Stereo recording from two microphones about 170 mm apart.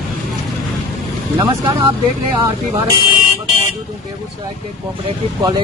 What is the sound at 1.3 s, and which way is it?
Speech, 30° right (ahead or behind).